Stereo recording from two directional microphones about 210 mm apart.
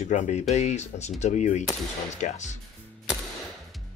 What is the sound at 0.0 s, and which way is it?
Speech, 35° left (ahead or behind).